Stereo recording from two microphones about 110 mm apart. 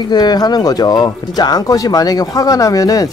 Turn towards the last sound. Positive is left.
turn(degrees=30)  # may be behind; listen again after turning